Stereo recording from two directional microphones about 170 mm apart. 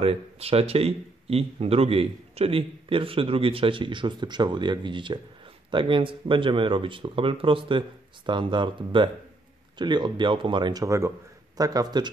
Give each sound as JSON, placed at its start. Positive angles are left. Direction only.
{"t": 0.0, "sound": "speech", "side_deg": -35}